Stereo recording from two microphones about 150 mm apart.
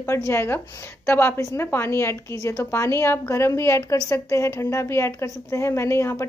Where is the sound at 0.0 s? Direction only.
20° left (ahead or behind).